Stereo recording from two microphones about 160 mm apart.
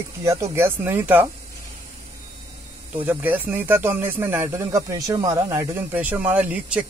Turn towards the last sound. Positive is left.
turn(degrees=-10)  # may be behind; listen again after turning